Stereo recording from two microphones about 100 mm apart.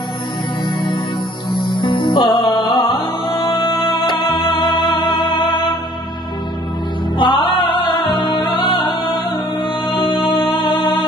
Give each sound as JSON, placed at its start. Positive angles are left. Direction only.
{"t": 1.5, "sound": "music", "side_deg": 55}
{"t": 7.2, "sound": "music", "side_deg": 55}